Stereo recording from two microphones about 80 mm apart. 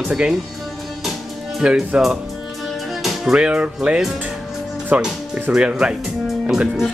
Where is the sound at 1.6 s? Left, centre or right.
Centre.